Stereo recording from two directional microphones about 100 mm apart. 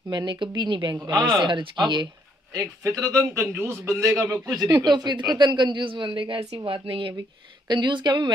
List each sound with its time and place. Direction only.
0.1 s speech: 50° right (ahead or behind)
2.5 s speech: 35° right (ahead or behind); by 7.2 s 60° right (ahead or behind)
7.6 s speech: 50° right (ahead or behind)